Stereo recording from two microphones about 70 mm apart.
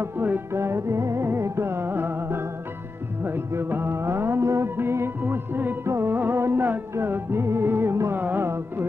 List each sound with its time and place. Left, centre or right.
0.0 s music: right
0.5 s music: right
5.9 s music: right